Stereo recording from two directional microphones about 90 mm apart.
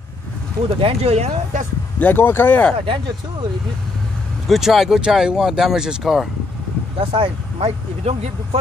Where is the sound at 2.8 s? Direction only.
65° right (ahead or behind).